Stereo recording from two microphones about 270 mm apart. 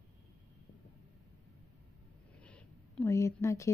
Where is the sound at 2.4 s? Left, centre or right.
Centre.